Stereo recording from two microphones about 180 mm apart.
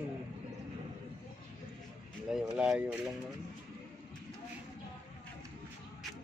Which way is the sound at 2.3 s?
5° right (ahead or behind).